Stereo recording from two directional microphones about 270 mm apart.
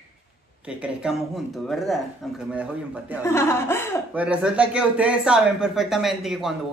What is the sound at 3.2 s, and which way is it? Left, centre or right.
Speech, centre.